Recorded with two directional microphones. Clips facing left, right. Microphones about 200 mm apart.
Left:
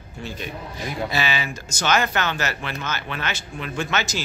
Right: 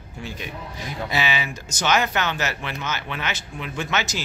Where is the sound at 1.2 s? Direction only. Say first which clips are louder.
Even; 15° right (ahead or behind).